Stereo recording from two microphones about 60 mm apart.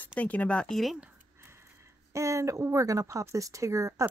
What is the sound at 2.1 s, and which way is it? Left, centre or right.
Speech, right.